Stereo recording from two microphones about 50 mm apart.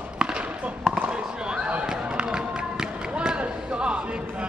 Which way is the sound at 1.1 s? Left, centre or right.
Right.